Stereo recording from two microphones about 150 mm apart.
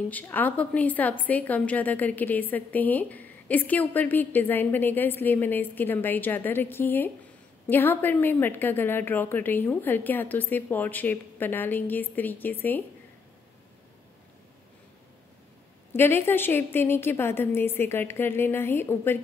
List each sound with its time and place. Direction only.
0.1 s a woman's voice: 10° left (ahead or behind)
15.9 s a woman's voice: 15° left (ahead or behind)